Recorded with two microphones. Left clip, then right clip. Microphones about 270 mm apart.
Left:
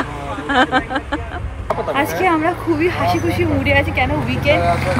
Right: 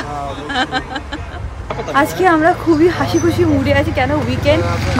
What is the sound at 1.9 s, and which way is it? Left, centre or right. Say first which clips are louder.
Speech: right 5 dB; right.